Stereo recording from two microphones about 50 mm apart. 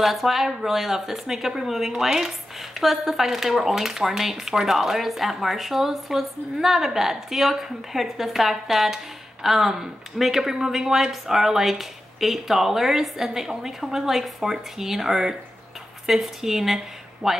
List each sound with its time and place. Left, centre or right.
0.0 s speech: centre